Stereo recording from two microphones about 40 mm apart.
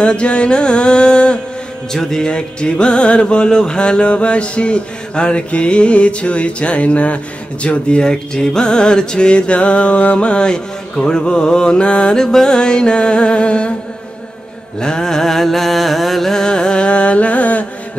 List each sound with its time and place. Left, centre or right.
0.0 s music: left
1.9 s music: centre; by 13.7 s left
14.8 s mantra: centre
16.4 s music: left